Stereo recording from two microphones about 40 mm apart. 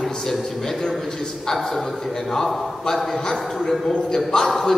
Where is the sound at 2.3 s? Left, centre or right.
Centre.